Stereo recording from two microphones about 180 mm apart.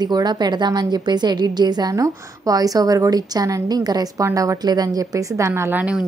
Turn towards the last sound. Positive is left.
turn(degrees=-10)  # may be behind; listen again after turning